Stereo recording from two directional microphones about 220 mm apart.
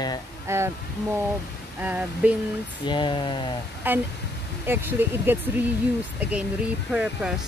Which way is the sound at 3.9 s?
10° right (ahead or behind).